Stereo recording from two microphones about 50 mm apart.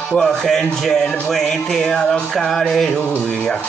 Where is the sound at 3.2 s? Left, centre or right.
Centre.